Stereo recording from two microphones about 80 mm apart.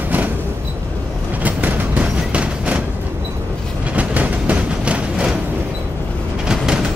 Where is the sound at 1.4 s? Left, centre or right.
Right.